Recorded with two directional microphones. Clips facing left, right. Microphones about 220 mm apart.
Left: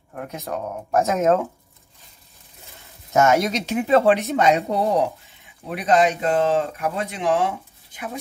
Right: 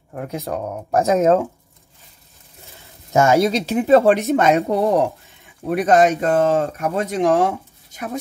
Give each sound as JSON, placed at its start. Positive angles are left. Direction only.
{"t": 0.1, "sound": "speech", "side_deg": -30}
{"t": 3.1, "sound": "speech", "side_deg": -30}